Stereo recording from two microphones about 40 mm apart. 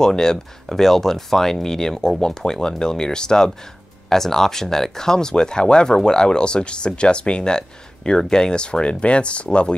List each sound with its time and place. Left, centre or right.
0.0 s speech: centre